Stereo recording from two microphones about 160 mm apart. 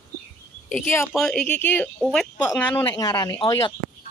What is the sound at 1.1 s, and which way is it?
Speech, 5° left (ahead or behind).